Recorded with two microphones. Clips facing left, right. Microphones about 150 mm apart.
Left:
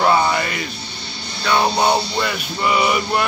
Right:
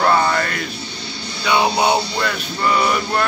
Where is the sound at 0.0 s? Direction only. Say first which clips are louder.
Even; 10° left (ahead or behind).